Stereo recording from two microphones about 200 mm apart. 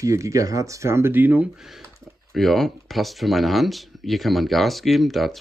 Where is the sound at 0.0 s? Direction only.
15° right (ahead or behind).